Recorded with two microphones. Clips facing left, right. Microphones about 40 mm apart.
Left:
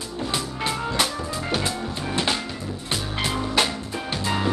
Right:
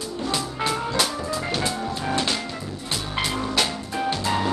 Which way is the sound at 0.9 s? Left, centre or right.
Left.